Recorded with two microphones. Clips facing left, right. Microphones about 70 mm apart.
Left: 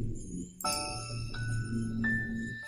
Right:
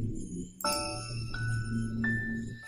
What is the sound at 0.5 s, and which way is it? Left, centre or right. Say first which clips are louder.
Music: right 3 dB; right.